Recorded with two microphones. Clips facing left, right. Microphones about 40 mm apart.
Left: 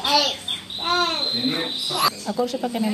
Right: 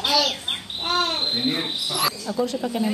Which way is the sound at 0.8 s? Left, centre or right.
Left.